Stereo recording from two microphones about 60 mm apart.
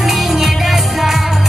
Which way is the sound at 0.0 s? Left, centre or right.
Centre.